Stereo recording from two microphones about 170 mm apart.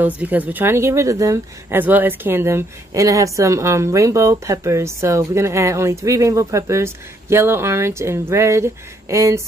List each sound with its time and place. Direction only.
0.0 s speech: 10° right (ahead or behind)